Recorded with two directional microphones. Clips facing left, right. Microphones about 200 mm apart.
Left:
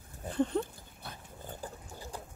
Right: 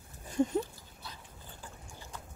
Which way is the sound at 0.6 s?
55° left (ahead or behind).